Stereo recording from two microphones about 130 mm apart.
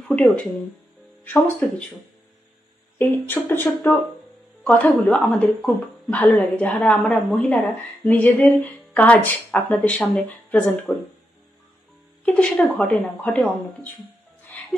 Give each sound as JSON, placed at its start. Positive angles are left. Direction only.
{"t": 0.1, "sound": "speech", "side_deg": 10}
{"t": 3.0, "sound": "speech", "side_deg": 15}
{"t": 12.3, "sound": "speech", "side_deg": 10}